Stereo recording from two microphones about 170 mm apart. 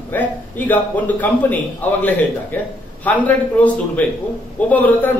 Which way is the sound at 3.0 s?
10° left (ahead or behind).